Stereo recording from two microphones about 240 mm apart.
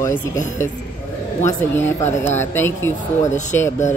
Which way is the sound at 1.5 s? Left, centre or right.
Centre.